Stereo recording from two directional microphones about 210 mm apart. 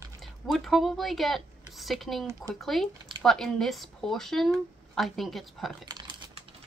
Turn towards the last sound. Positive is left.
turn(degrees=-20)  # may be behind; listen again after turning